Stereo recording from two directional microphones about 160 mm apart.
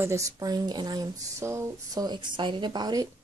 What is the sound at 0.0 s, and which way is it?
Speech, 20° right (ahead or behind).